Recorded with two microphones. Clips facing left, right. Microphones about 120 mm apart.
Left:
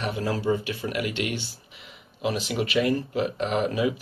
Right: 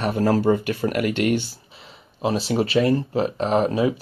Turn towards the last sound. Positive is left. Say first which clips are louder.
# right 5 dB
turn(degrees=-35)  # may be behind; listen again after turning